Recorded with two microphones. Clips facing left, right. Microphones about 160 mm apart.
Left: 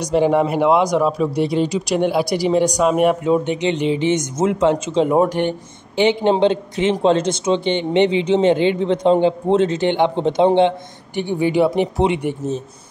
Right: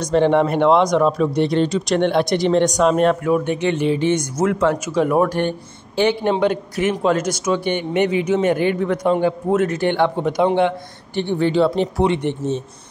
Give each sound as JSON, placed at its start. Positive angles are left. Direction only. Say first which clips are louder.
{"t": 0.0, "sound": "speech", "louder": "even", "side_deg": 10}
{"t": 3.3, "sound": "speech", "louder": "left 1 dB", "side_deg": 20}
{"t": 11.1, "sound": "speech", "louder": "even", "side_deg": 10}